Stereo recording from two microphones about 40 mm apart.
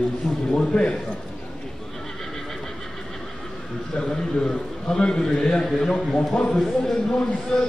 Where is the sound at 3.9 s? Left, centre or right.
Centre.